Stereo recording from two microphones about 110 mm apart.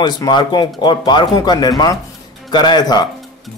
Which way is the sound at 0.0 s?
40° left (ahead or behind).